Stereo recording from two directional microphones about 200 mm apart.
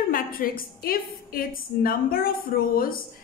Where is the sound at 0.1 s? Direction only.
45° left (ahead or behind).